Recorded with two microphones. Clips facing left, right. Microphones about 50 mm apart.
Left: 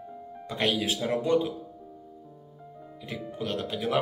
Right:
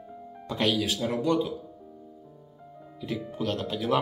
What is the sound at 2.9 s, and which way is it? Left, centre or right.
Speech, centre.